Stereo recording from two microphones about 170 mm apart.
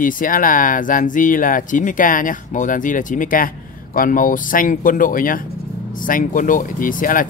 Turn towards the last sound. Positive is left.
turn(degrees=55)  # may be behind; listen again after turning